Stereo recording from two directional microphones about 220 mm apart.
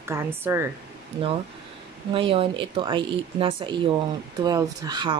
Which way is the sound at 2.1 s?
25° right (ahead or behind).